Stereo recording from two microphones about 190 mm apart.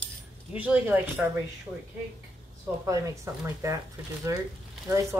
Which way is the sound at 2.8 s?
15° right (ahead or behind).